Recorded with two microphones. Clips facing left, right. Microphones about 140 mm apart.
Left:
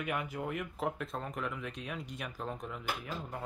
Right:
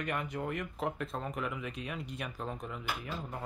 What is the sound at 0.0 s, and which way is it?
Speech, 5° left (ahead or behind).